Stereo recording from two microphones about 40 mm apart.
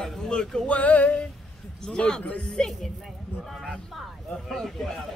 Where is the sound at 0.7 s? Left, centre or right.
Left.